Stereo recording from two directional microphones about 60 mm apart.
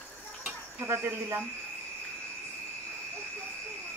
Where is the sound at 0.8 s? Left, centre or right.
Right.